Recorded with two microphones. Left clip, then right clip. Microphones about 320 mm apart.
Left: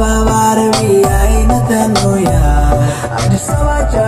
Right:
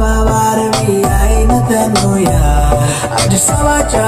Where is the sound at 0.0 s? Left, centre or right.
Centre.